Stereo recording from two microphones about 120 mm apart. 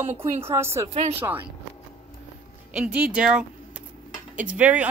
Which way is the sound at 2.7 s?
10° right (ahead or behind).